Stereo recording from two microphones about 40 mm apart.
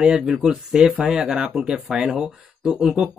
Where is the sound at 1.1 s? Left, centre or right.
Centre.